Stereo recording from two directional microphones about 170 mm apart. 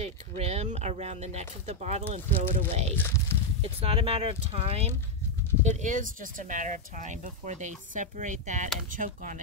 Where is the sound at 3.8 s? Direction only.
35° right (ahead or behind).